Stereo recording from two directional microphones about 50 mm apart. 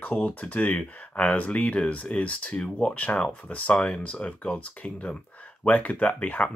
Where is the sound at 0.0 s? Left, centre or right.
Left.